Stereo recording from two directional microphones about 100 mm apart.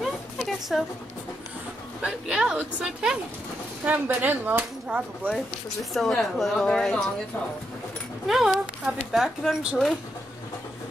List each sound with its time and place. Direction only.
0.0 s a sound: centre (ahead or behind)
2.0 s speech: 10° right (ahead or behind)
5.3 s speech: 5° left (ahead or behind)
8.3 s speech: 5° right (ahead or behind)